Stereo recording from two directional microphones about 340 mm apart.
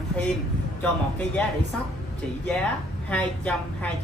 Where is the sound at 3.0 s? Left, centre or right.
Centre.